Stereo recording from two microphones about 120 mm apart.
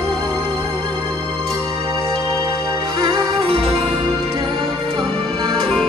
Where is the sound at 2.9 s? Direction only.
40° right (ahead or behind).